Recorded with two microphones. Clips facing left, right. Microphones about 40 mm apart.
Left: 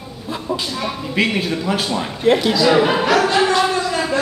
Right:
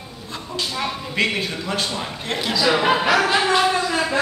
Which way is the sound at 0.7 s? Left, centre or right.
Centre.